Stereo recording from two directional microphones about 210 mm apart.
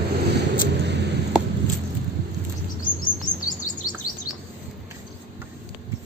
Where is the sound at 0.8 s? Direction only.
55° right (ahead or behind).